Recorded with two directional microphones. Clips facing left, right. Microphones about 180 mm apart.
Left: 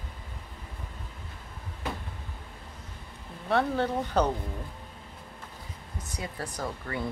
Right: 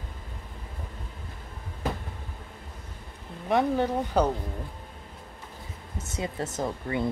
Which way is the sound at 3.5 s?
15° right (ahead or behind).